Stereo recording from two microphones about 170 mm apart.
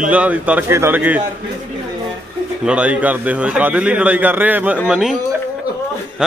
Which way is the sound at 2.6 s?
5° right (ahead or behind).